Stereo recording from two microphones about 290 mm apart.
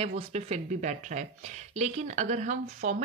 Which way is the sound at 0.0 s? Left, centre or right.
Right.